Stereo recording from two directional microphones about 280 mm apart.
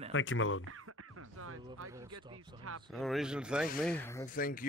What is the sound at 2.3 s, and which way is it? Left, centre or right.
Speech, right.